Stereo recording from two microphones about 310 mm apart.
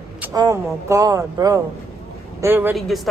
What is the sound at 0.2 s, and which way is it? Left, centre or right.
A woman's voice, centre.